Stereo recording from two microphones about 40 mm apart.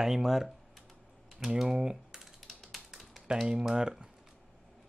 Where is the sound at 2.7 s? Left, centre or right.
Centre.